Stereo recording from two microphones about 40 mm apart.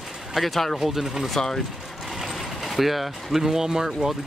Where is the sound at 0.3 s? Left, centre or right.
Centre.